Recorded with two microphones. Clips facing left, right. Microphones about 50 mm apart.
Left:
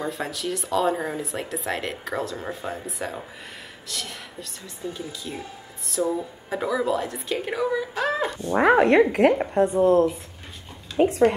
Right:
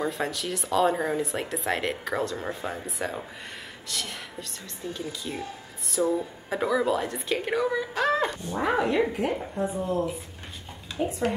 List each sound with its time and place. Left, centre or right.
0.0 s speech: centre
8.5 s speech: left
11.0 s speech: left